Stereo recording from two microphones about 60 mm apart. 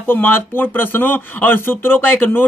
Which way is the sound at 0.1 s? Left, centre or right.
Left.